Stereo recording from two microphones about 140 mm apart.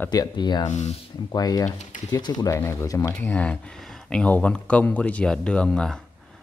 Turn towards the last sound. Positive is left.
turn(degrees=5)  # may be behind; listen again after turning